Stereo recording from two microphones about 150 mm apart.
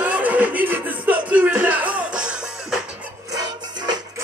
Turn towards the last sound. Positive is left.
turn(degrees=-30)  # may be behind; listen again after turning